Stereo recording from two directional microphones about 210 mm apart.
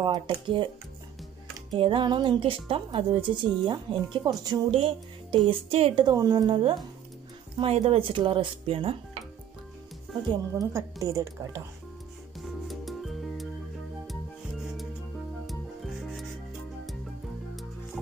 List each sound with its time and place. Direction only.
0.0 s speech: 20° right (ahead or behind)
1.8 s speech: 20° right (ahead or behind)
10.5 s speech: 15° right (ahead or behind)
12.4 s music: centre (ahead or behind)
15.4 s music: centre (ahead or behind)